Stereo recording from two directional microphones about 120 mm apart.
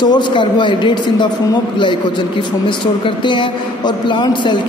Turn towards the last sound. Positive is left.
turn(degrees=40)  # may be behind; listen again after turning